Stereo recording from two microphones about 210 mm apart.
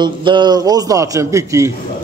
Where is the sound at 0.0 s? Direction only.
20° right (ahead or behind).